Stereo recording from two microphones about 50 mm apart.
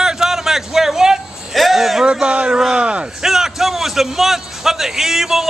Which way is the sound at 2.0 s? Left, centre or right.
Right.